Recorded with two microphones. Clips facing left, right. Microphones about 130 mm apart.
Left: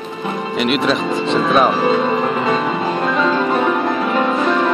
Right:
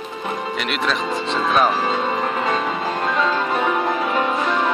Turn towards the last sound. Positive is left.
turn(degrees=-5)  # may be behind; listen again after turning